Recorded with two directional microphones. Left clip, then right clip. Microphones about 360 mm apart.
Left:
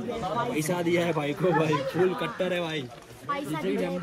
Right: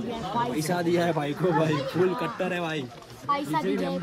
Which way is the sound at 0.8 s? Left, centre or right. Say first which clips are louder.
Right 1 dB; centre.